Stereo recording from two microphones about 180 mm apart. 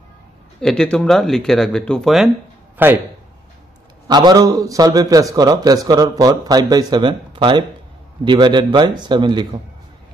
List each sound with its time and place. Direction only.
0.6 s speech: 5° left (ahead or behind)
4.1 s a man's voice: 20° right (ahead or behind)